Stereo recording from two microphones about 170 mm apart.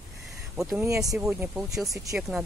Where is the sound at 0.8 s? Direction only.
20° right (ahead or behind).